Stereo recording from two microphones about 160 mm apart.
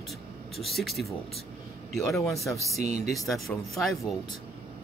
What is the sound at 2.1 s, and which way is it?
Speech, 20° left (ahead or behind).